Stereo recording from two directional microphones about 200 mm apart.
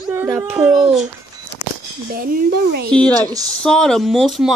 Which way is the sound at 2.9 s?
5° left (ahead or behind).